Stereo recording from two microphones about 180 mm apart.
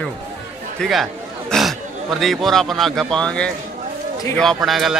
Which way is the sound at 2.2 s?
Centre (ahead or behind).